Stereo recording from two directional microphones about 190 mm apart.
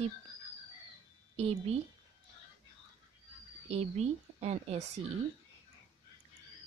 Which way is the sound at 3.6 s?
35° right (ahead or behind).